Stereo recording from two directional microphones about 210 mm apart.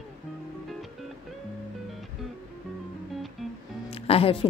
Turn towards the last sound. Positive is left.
turn(degrees=25)  # may be behind; listen again after turning